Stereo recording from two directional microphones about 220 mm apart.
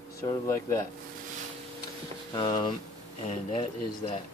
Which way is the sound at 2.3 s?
20° left (ahead or behind).